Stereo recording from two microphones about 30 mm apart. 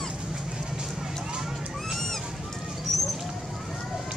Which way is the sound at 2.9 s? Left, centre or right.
Centre.